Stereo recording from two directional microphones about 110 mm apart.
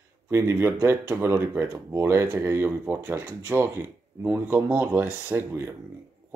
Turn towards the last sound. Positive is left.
turn(degrees=-20)  # may be behind; listen again after turning